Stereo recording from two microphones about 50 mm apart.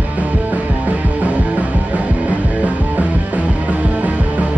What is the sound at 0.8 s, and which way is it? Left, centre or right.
Music, right.